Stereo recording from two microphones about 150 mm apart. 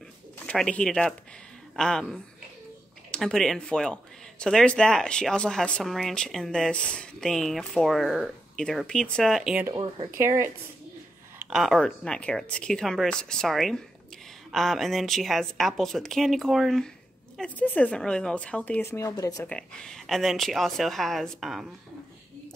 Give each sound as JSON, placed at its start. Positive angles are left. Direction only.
{"t": 0.5, "sound": "speech", "side_deg": 5}
{"t": 10.1, "sound": "speech", "side_deg": -15}
{"t": 11.5, "sound": "speech", "side_deg": 0}
{"t": 19.4, "sound": "speech", "side_deg": 5}